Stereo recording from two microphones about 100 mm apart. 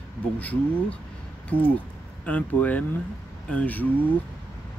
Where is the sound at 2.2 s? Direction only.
15° left (ahead or behind).